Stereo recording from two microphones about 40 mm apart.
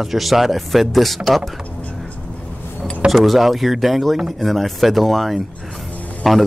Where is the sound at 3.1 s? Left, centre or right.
Centre.